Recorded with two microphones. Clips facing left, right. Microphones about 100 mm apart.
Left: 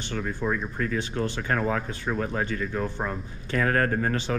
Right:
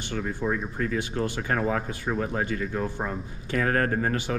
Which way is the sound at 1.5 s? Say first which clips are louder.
Even; 40° right (ahead or behind).